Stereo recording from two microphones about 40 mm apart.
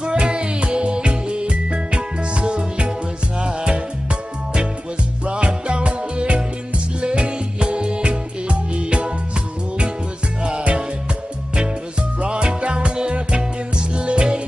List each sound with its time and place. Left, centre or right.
0.0 s music: right
12.2 s music: right